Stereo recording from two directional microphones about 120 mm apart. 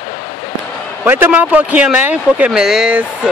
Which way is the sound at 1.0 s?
20° right (ahead or behind).